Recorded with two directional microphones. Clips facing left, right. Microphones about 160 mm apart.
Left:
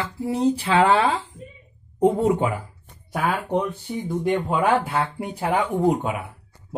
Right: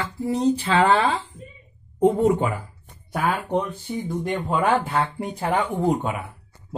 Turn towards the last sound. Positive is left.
turn(degrees=5)  # may be behind; listen again after turning